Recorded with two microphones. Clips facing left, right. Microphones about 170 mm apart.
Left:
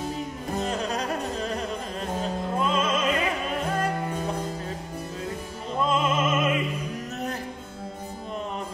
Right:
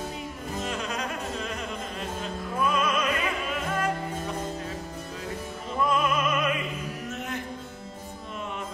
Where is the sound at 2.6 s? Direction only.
25° left (ahead or behind).